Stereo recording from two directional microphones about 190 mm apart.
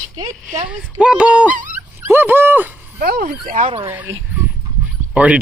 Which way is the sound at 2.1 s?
10° right (ahead or behind).